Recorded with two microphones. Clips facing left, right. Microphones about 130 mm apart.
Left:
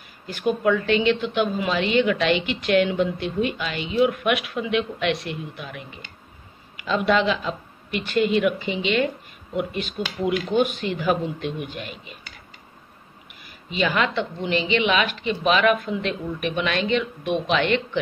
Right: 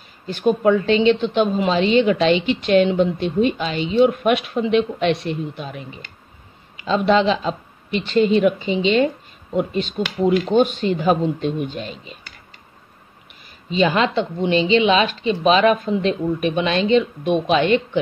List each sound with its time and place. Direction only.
0.3 s a woman's voice: 25° right (ahead or behind)
7.1 s a woman's voice: 30° right (ahead or behind)
13.7 s a woman's voice: 30° right (ahead or behind)